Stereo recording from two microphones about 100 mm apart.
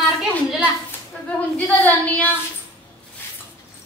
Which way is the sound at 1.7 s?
15° left (ahead or behind).